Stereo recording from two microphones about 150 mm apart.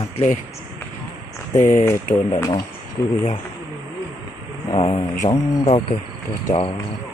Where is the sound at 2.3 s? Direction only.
25° left (ahead or behind).